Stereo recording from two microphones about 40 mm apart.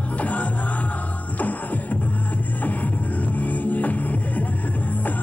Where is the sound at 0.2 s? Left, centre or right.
Left.